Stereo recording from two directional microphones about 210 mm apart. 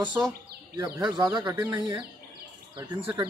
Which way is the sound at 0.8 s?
15° right (ahead or behind).